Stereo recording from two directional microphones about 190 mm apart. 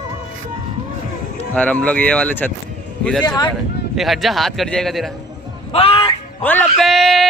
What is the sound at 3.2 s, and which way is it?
Speech, 20° left (ahead or behind).